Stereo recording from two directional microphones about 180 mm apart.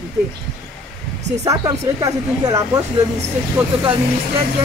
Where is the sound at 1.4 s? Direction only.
20° right (ahead or behind).